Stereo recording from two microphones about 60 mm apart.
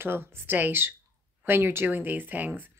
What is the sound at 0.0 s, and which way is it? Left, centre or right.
Speech, right.